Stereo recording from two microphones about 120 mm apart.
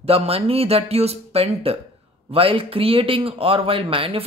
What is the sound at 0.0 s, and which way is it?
Speech, 55° right (ahead or behind).